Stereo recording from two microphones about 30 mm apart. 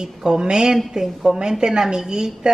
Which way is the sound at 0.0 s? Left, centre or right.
Right.